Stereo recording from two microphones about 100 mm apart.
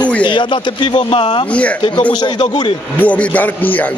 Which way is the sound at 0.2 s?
55° left (ahead or behind).